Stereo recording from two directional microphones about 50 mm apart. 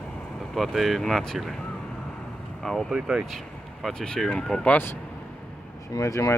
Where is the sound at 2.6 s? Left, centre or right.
Centre.